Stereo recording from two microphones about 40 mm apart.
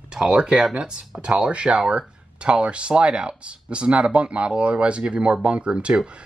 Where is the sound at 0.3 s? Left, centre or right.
Right.